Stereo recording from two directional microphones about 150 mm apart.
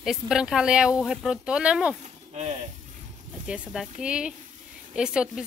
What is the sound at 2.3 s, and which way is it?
Speech, 45° right (ahead or behind).